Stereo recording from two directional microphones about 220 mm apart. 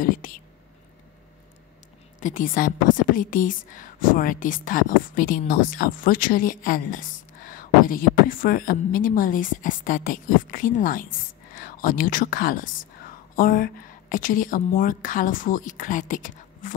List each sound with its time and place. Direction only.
0.0 s speech: 40° left (ahead or behind)
2.1 s a woman's voice: 35° left (ahead or behind)